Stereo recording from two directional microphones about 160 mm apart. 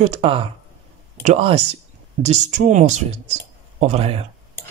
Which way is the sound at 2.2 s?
50° right (ahead or behind).